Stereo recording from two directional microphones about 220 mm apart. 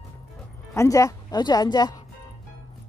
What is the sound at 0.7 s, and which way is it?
Speech, 15° left (ahead or behind).